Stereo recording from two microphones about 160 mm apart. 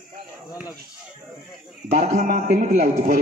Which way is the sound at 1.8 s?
45° right (ahead or behind).